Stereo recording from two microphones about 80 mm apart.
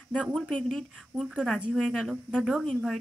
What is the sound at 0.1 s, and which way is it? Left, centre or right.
Speech, centre.